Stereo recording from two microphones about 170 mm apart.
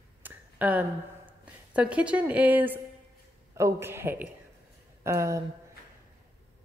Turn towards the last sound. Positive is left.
turn(degrees=-15)  # may be behind; listen again after turning